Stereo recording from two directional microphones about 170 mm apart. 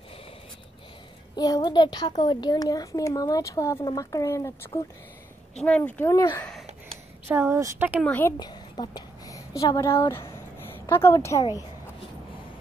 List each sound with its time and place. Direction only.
1.3 s a woman's voice: 25° left (ahead or behind)
5.6 s speech: 5° left (ahead or behind)
7.2 s a woman's voice: 10° right (ahead or behind)
8.0 s speech: 10° left (ahead or behind)
8.4 s a sound: 25° left (ahead or behind)
9.6 s a woman's voice: 20° left (ahead or behind)